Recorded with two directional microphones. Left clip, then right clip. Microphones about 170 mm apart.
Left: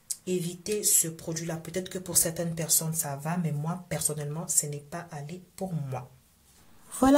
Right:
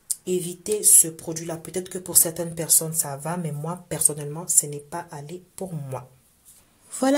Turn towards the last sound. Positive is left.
turn(degrees=-25)  # may be behind; listen again after turning